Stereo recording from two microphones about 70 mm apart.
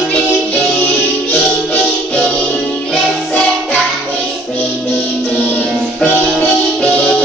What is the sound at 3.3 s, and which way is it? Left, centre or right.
Music, centre.